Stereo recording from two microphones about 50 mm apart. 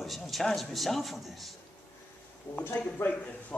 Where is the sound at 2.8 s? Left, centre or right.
Left.